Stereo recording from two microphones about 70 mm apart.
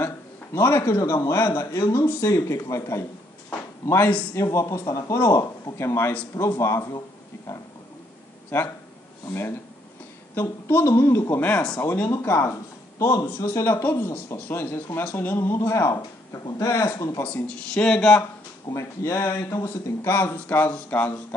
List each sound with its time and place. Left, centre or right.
0.0 s a man's voice: left
8.5 s speech: left
10.7 s speech: left
12.1 s speech: left
13.0 s a man's voice: left
13.4 s speech: left
17.2 s speech: centre
18.7 s speech: left
20.2 s speech: left